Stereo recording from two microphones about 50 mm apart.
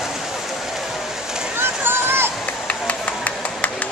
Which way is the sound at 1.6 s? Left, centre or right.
Right.